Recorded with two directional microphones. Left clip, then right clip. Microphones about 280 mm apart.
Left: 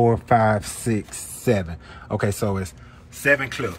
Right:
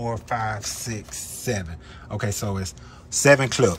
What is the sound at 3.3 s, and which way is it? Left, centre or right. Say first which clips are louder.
Speech: right 3 dB; centre.